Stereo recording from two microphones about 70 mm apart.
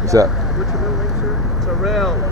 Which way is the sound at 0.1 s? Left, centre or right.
Right.